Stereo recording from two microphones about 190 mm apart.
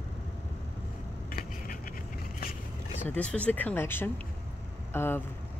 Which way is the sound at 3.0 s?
5° left (ahead or behind).